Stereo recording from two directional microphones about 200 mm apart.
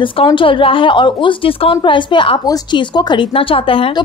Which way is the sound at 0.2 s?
25° left (ahead or behind).